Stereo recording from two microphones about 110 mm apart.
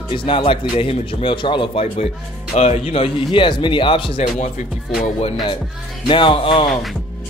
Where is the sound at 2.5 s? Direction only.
85° left; by 4.2 s 50° left (ahead or behind).